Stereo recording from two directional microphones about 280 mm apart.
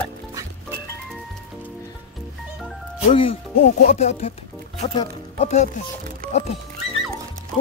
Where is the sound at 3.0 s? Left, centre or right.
Centre.